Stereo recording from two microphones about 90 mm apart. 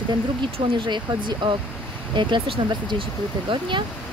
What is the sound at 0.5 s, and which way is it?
Speech, 65° right (ahead or behind).